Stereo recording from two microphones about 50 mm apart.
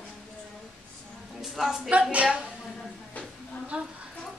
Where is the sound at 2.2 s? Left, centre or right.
Centre.